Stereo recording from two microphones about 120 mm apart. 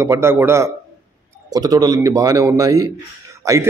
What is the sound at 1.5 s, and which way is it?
Speech, 30° right (ahead or behind).